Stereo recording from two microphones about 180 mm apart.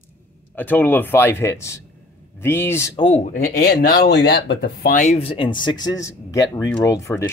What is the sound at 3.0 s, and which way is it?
Speech, 35° left (ahead or behind).